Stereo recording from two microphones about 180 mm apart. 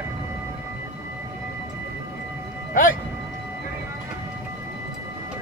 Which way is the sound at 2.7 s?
50° left (ahead or behind).